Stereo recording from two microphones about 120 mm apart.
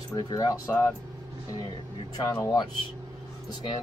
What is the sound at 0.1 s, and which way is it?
Speech, 30° left (ahead or behind).